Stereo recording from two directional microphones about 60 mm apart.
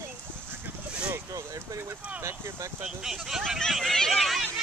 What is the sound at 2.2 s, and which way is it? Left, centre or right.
Vehicle, right.